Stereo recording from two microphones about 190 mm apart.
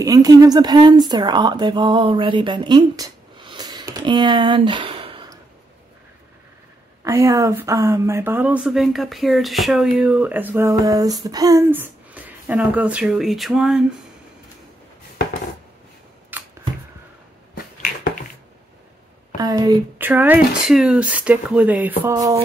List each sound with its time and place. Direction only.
0.0 s speech: 20° right (ahead or behind)
7.1 s speech: 15° right (ahead or behind)
16.3 s a sound: 10° right (ahead or behind)
19.3 s a woman's voice: 20° right (ahead or behind)
20.1 s speech: 10° right (ahead or behind)